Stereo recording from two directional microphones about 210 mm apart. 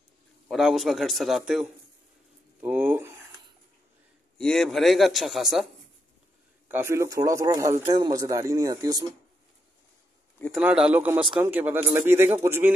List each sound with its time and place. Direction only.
0.5 s a man's voice: centre (ahead or behind)
4.4 s a man's voice: centre (ahead or behind)
6.7 s a man's voice: 10° right (ahead or behind)
10.6 s a man's voice: 5° right (ahead or behind)